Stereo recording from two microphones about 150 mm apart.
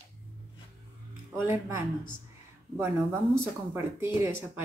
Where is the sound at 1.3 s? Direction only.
15° right (ahead or behind).